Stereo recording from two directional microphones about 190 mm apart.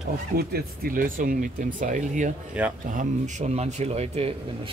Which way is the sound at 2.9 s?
40° right (ahead or behind).